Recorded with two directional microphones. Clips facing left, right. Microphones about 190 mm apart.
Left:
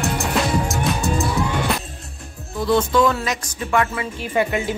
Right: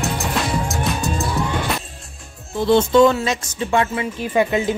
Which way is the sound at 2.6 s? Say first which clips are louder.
Right 4 dB; 25° right (ahead or behind).